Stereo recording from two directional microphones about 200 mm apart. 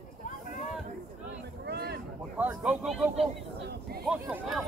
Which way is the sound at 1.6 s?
55° right (ahead or behind).